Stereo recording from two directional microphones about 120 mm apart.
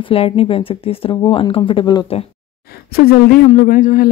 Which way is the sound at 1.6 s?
40° left (ahead or behind).